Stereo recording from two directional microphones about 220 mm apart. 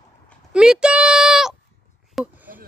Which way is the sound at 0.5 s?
5° right (ahead or behind).